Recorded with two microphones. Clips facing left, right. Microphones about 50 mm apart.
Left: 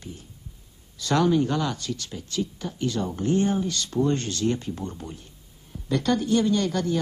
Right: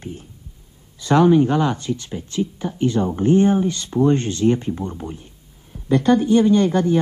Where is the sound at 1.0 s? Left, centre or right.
Right.